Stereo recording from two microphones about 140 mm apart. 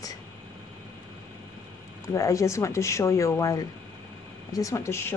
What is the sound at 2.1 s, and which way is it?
A woman's voice, 25° left (ahead or behind).